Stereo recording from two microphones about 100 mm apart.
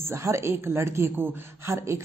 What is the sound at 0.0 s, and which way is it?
A woman's voice, 30° right (ahead or behind).